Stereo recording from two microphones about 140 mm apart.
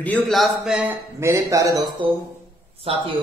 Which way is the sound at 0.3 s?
5° right (ahead or behind).